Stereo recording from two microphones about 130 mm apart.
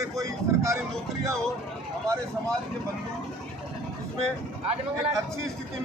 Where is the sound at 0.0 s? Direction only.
25° right (ahead or behind).